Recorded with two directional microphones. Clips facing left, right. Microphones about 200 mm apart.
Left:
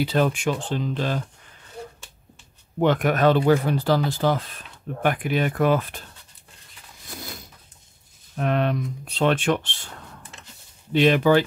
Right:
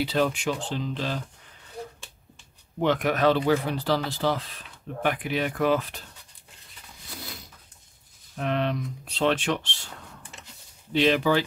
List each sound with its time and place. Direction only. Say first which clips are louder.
0.0 s speech: left 3 dB; 50° left (ahead or behind)
2.8 s speech: left 3 dB; 50° left (ahead or behind)
8.4 s speech: left 4 dB; 50° left (ahead or behind)
10.9 s speech: left 4 dB; 50° left (ahead or behind)